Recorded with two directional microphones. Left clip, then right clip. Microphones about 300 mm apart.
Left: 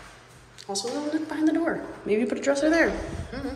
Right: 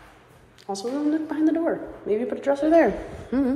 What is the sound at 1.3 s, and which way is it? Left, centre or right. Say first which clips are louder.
Speech: even; centre.